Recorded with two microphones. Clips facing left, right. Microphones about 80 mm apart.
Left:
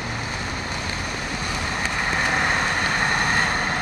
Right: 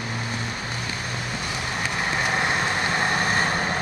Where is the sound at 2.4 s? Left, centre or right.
Left.